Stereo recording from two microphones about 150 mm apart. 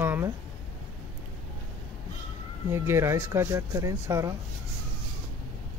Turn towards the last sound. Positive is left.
turn(degrees=-20)  # may be behind; listen again after turning